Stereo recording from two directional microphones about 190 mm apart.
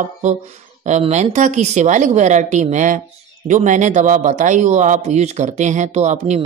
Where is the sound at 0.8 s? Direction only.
35° right (ahead or behind).